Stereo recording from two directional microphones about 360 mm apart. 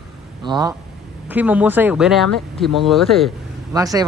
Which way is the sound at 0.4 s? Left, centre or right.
Centre.